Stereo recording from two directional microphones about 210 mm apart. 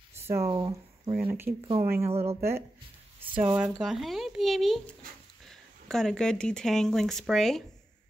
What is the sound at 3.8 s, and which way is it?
Speech, centre (ahead or behind).